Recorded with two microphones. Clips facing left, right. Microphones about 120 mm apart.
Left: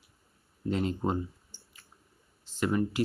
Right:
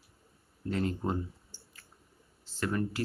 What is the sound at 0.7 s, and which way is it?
Speech, 20° left (ahead or behind).